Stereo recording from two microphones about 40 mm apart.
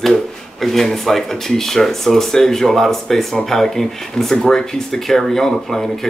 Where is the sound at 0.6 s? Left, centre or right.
Centre.